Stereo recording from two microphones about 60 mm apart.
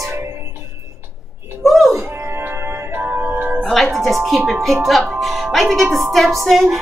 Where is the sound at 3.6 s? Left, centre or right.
Centre.